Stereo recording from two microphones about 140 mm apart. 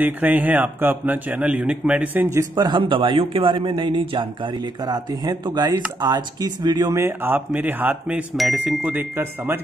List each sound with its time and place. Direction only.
0.0 s a man's voice: 10° right (ahead or behind)
2.5 s a man's voice: 35° right (ahead or behind); by 9.6 s 15° right (ahead or behind)